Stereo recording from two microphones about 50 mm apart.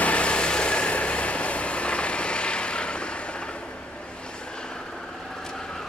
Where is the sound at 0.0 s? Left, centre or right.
Left.